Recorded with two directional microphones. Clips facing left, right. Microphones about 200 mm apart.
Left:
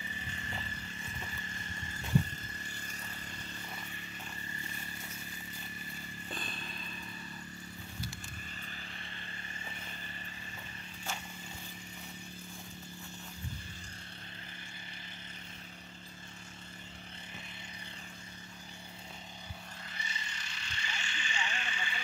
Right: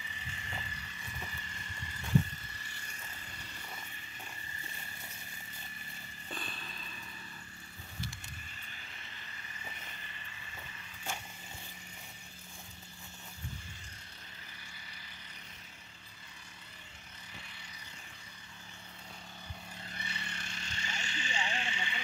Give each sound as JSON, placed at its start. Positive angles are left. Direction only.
{"t": 0.4, "sound": "vehicle", "side_deg": 45}
{"t": 19.9, "sound": "vehicle", "side_deg": -60}